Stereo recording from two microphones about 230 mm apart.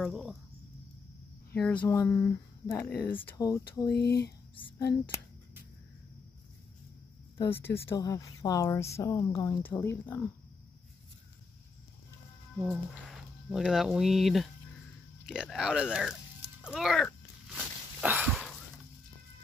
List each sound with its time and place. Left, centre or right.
0.0 s speech: centre
1.5 s speech: centre
3.9 s speech: left
4.6 s speech: left
7.3 s speech: centre
12.5 s speech: centre
15.2 s a sound: centre